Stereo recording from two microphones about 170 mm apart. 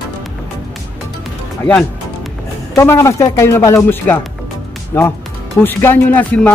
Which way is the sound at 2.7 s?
20° left (ahead or behind).